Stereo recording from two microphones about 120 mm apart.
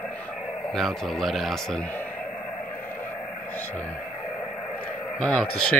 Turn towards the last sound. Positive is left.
turn(degrees=10)  # may be behind; listen again after turning